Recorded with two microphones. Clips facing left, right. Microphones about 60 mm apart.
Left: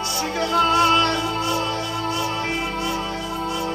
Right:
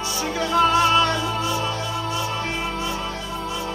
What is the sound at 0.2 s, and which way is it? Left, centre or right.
Music, centre.